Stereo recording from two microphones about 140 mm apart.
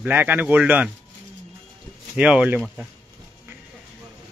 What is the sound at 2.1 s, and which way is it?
Speech, 10° right (ahead or behind).